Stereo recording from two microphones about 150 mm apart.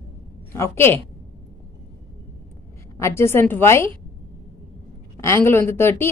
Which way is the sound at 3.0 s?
15° left (ahead or behind).